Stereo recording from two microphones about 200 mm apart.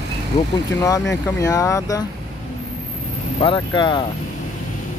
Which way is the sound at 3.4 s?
25° left (ahead or behind).